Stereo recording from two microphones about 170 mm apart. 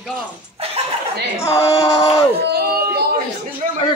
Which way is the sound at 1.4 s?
20° left (ahead or behind).